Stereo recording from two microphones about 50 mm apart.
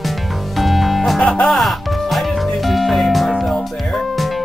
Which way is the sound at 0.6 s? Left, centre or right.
Centre.